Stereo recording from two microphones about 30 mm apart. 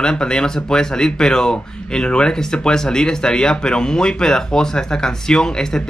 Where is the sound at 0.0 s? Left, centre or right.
Left.